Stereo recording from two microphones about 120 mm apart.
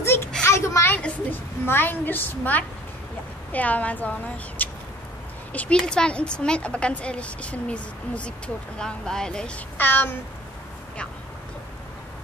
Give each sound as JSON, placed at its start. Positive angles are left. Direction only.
{"t": 0.0, "sound": "a sound", "side_deg": 20}
{"t": 0.9, "sound": "a woman's voice", "side_deg": 15}
{"t": 9.8, "sound": "a woman's voice", "side_deg": 15}